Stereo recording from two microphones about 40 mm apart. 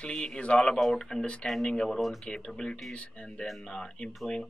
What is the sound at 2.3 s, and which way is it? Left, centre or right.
Speech, centre.